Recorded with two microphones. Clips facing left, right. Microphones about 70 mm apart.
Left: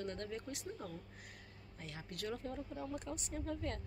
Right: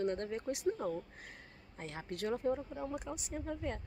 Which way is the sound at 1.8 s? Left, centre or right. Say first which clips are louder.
Right 6 dB; right.